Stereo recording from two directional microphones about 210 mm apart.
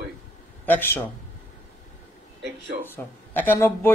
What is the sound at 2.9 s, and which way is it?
A man's voice, 10° left (ahead or behind).